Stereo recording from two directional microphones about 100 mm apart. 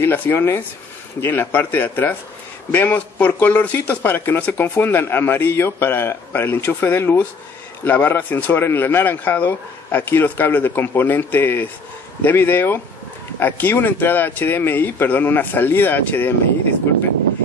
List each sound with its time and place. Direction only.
0.0 s a man's voice: 20° left (ahead or behind)